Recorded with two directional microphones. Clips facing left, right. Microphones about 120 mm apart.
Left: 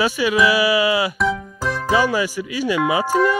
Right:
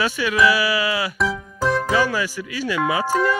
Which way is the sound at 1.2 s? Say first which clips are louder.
Left 1 dB; centre (ahead or behind).